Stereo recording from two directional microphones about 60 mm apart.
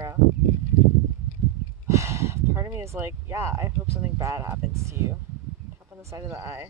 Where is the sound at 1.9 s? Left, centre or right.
Right.